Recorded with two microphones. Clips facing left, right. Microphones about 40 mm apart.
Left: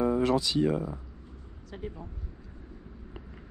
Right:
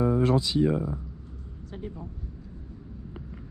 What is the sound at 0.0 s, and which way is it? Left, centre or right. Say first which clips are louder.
Music: right 2 dB; left.